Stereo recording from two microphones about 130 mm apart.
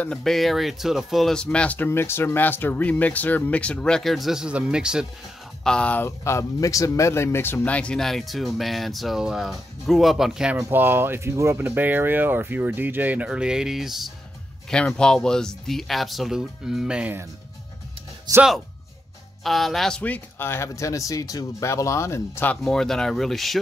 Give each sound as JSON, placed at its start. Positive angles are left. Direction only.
{"t": 0.0, "sound": "speech", "side_deg": 5}
{"t": 5.6, "sound": "speech", "side_deg": 5}
{"t": 10.7, "sound": "speech", "side_deg": -15}
{"t": 18.3, "sound": "speech", "side_deg": -30}
{"t": 19.4, "sound": "speech", "side_deg": 0}
{"t": 22.6, "sound": "speech", "side_deg": 5}